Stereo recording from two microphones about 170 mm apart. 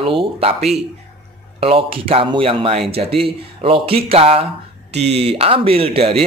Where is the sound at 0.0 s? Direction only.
35° right (ahead or behind).